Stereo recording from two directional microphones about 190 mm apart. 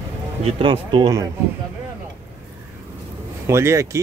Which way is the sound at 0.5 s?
25° right (ahead or behind).